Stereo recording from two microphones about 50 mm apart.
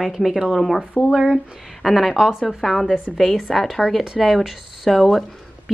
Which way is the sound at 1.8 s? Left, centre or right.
Centre.